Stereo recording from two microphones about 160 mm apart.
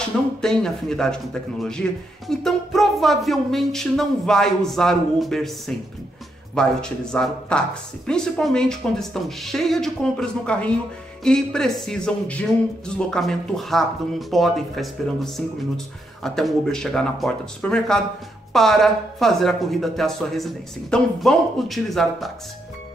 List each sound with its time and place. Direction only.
0.4 s a man's voice: 5° left (ahead or behind)